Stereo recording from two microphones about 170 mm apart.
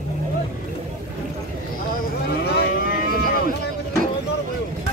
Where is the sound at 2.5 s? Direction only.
65° left (ahead or behind).